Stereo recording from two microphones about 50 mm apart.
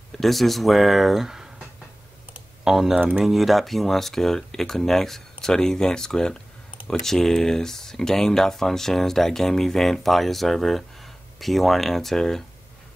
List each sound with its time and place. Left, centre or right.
0.2 s speech: centre
2.6 s speech: centre
2.9 s speech: right
3.3 s speech: centre